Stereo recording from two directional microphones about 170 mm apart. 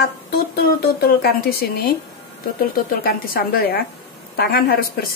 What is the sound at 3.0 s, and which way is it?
Speech, 60° left (ahead or behind).